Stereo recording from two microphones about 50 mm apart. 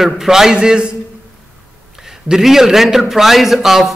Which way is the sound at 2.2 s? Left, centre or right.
Centre.